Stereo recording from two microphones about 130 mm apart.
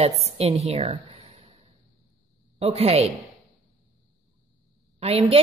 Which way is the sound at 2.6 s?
50° right (ahead or behind).